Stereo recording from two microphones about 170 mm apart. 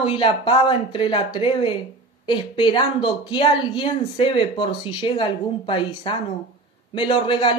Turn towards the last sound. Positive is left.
turn(degrees=30)  # may be behind; listen again after turning